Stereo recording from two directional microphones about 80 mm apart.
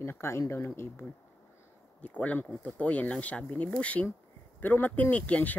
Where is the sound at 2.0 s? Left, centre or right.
Centre.